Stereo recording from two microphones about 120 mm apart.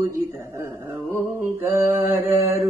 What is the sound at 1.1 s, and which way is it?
Mantra, 20° right (ahead or behind).